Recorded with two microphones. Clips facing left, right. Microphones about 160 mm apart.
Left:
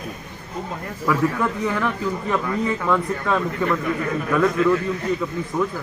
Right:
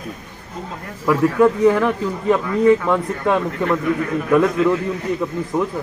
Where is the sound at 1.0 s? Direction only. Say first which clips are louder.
Right 7 dB; 25° right (ahead or behind).